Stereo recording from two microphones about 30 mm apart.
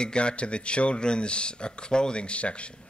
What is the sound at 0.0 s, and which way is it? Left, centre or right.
Speech, left.